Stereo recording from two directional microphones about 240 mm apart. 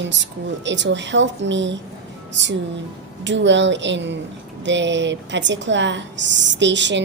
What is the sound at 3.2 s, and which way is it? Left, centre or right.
A woman's voice, right.